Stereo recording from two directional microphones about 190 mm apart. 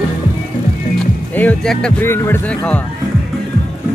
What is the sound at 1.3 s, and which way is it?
Speech, 5° left (ahead or behind).